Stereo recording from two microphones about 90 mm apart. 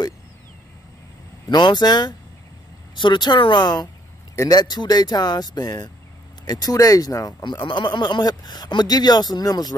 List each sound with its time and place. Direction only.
1.5 s speech: 55° left (ahead or behind)
7.4 s speech: 60° left (ahead or behind)